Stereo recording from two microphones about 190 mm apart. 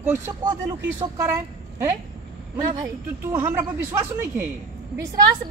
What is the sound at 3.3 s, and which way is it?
A man's voice, 15° right (ahead or behind).